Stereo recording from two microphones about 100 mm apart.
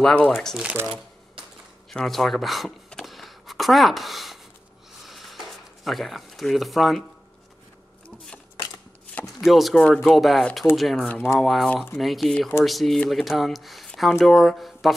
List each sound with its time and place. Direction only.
0.0 s speech: 10° left (ahead or behind)
1.9 s speech: 5° left (ahead or behind)
5.0 s a sound: centre (ahead or behind)
5.9 s speech: centre (ahead or behind)
9.2 s speech: centre (ahead or behind)
11.7 s speech: 15° left (ahead or behind)
12.0 s speech: centre (ahead or behind)